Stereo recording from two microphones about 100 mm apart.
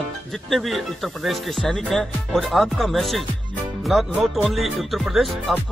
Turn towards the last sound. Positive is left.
turn(degrees=0)  # may be behind; listen again after turning